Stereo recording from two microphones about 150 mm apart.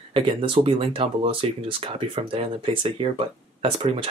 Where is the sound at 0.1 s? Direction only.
35° right (ahead or behind).